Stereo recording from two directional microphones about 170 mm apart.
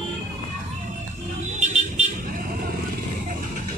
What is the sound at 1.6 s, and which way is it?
Vehicle, 40° right (ahead or behind).